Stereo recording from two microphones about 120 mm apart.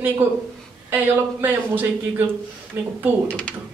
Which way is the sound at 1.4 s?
15° right (ahead or behind).